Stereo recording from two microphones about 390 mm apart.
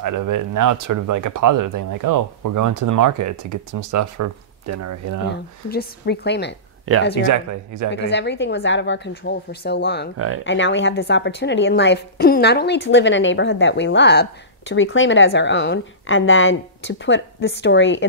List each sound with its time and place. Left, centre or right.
0.0 s speech: right
5.3 s a woman's voice: left
6.9 s speech: right
7.2 s speech: right
7.9 s a woman's voice: left
10.1 s speech: right
10.4 s a woman's voice: left